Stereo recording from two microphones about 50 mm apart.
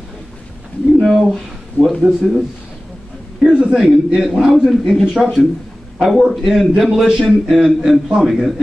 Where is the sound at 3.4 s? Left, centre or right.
Centre.